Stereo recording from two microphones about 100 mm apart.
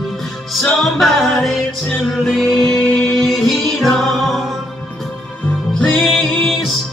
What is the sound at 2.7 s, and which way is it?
Music, 20° left (ahead or behind).